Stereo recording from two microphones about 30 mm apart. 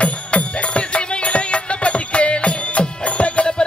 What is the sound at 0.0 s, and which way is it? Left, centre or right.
Music, left.